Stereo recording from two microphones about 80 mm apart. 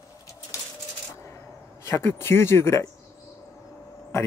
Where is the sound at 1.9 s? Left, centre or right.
Left.